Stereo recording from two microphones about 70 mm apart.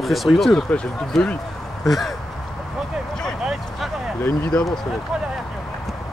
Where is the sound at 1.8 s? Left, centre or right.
Centre.